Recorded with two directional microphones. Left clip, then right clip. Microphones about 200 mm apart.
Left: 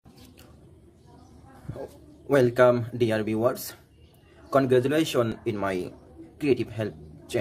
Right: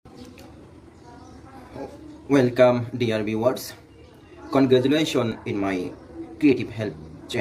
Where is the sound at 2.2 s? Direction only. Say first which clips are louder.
Right 2 dB; 55° left (ahead or behind).